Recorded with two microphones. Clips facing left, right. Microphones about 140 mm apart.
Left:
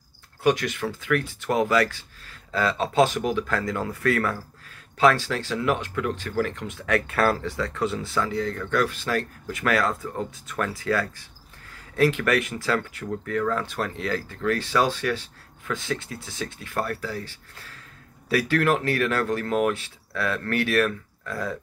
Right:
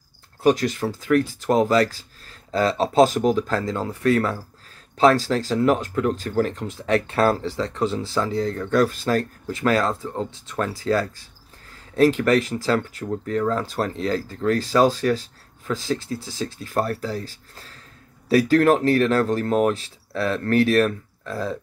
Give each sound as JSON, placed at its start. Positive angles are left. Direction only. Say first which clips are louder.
{"t": 0.4, "sound": "speech", "louder": "right 4 dB", "side_deg": -35}